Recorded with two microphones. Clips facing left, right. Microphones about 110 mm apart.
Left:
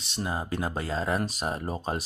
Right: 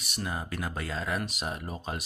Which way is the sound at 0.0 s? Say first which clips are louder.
Left 3 dB; 25° left (ahead or behind).